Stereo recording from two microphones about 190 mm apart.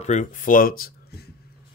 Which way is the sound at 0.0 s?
40° left (ahead or behind).